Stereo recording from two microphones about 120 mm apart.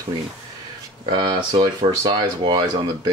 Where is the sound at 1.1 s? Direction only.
40° right (ahead or behind).